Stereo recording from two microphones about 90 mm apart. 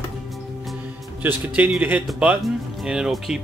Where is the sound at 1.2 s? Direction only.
20° right (ahead or behind).